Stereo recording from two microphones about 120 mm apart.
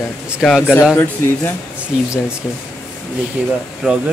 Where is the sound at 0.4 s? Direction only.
Centre (ahead or behind).